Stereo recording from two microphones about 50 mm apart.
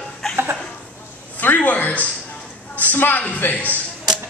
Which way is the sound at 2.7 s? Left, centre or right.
Left.